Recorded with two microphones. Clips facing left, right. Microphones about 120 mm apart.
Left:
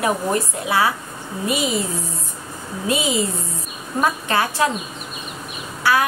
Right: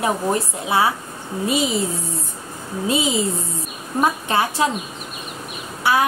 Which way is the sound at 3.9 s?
20° right (ahead or behind).